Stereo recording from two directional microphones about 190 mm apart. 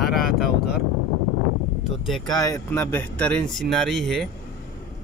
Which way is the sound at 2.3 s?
20° left (ahead or behind).